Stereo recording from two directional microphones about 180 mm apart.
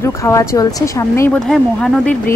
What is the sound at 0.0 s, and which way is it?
Speech, 15° left (ahead or behind).